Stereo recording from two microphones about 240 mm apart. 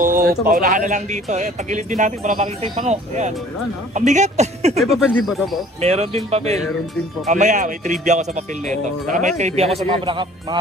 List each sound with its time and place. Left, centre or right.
0.0 s speech: right
4.7 s speech: centre
5.8 s speech: right